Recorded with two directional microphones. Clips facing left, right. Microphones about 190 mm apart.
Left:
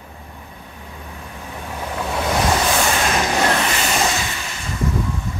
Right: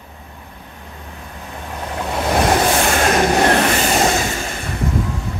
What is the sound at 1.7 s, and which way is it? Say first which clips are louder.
Vehicle: right 1 dB; centre (ahead or behind).